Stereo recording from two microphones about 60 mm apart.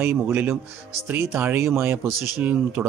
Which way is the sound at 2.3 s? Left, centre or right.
Right.